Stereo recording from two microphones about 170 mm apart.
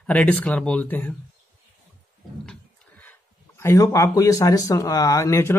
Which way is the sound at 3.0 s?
15° left (ahead or behind).